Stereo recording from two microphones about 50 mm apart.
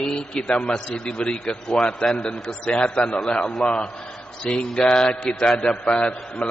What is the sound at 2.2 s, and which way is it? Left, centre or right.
Speech, left.